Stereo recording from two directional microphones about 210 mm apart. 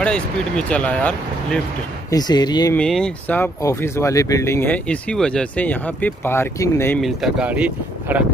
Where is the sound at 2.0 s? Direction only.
20° left (ahead or behind).